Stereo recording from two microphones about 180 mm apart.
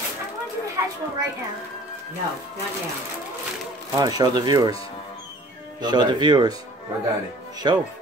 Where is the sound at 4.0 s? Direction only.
20° right (ahead or behind).